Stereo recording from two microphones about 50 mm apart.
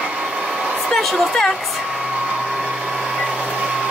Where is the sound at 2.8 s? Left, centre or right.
Centre.